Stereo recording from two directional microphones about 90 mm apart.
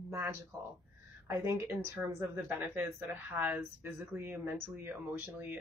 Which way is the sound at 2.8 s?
15° right (ahead or behind).